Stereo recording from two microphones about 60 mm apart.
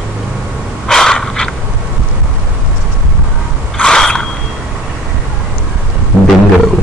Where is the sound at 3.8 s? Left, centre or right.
Centre.